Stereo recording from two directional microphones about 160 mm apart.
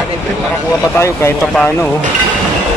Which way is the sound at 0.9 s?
15° left (ahead or behind).